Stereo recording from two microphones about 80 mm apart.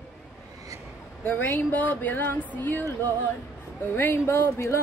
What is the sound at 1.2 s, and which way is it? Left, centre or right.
Speech, left.